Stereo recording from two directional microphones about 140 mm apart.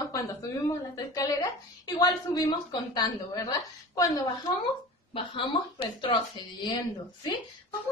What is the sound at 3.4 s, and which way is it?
Speech, 25° left (ahead or behind).